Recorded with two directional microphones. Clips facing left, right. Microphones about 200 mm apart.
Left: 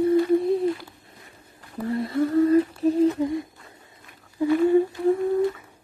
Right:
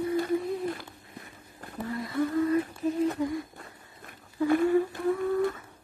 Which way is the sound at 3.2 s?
25° left (ahead or behind).